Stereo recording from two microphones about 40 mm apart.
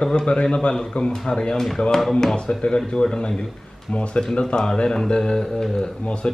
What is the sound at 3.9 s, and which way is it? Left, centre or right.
Speech, left.